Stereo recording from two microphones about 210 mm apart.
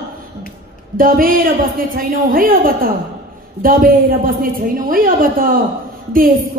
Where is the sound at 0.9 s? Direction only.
40° right (ahead or behind).